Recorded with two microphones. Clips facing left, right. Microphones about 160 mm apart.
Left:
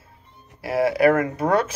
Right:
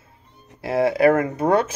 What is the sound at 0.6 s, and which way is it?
Speech, 25° right (ahead or behind).